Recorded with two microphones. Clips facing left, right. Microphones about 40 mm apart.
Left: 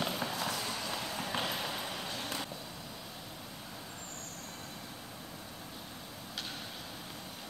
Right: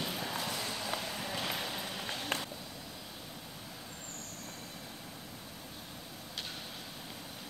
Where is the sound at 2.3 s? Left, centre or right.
Right.